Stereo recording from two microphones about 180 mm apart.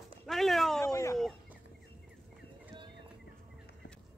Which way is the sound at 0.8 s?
15° left (ahead or behind).